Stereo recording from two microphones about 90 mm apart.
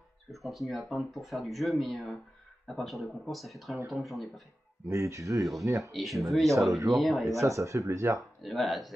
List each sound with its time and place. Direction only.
0.3 s speech: centre (ahead or behind)
4.8 s speech: 35° right (ahead or behind)
5.9 s speech: centre (ahead or behind)
7.3 s speech: 35° right (ahead or behind)
8.4 s speech: centre (ahead or behind)